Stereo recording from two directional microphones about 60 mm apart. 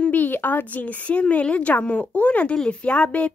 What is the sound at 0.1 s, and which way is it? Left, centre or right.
A woman's voice, left.